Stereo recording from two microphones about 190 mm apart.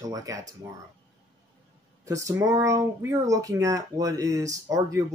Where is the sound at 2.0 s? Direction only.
15° right (ahead or behind).